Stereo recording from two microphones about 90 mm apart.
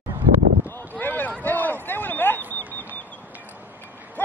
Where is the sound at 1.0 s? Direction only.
20° left (ahead or behind).